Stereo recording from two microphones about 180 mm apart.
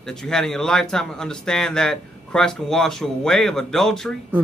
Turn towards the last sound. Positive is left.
turn(degrees=0)  # may be behind; listen again after turning